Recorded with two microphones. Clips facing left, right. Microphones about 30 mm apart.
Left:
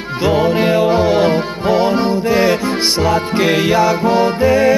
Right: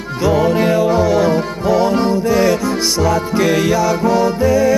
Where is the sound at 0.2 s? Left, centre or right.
Left.